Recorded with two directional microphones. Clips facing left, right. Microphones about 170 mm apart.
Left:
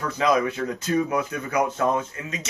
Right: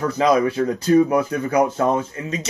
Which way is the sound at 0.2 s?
35° right (ahead or behind).